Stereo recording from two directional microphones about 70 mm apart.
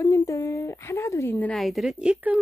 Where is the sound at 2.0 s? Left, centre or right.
Centre.